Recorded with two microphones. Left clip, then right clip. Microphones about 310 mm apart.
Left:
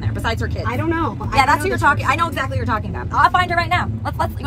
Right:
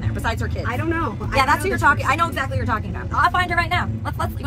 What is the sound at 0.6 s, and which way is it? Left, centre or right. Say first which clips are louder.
Speech: left 3 dB; left.